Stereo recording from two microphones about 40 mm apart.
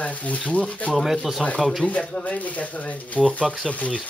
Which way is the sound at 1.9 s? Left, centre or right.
Left.